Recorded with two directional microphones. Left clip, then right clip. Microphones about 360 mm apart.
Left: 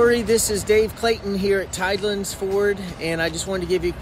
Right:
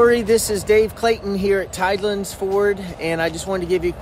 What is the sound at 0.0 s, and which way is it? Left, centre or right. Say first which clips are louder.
Speech: right 3 dB; centre.